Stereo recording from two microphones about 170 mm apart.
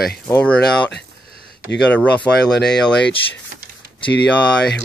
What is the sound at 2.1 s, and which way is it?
Speech, 5° left (ahead or behind).